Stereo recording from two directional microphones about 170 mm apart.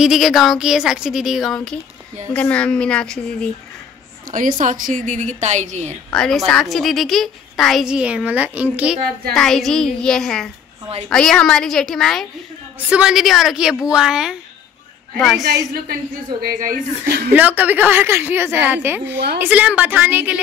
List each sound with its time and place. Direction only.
0.0 s a woman's voice: centre (ahead or behind)
4.3 s a woman's voice: 55° right (ahead or behind)
6.1 s a woman's voice: centre (ahead or behind)
16.3 s a woman's voice: 55° right (ahead or behind)
17.3 s a woman's voice: 10° right (ahead or behind)
19.1 s a woman's voice: 80° right
19.4 s a woman's voice: 10° right (ahead or behind)